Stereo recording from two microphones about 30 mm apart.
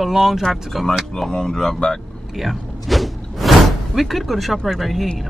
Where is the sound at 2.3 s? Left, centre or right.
Centre.